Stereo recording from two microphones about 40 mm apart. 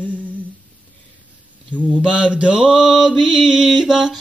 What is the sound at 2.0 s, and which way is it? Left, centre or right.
Mantra, right.